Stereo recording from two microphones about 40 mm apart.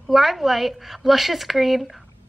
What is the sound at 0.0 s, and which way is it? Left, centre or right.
A woman's voice, centre.